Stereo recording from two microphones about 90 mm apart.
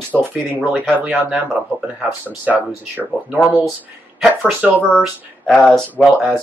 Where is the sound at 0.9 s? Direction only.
15° right (ahead or behind).